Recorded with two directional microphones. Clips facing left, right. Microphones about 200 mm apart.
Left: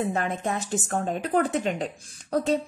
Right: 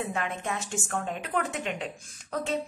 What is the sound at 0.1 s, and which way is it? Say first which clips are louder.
A woman's voice: left 5 dB; 40° left (ahead or behind).